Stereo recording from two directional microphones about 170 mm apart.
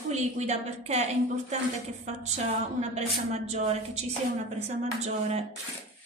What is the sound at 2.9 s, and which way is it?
A woman's voice, 40° right (ahead or behind).